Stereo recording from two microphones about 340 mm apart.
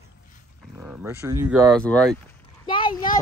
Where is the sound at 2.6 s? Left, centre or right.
Centre.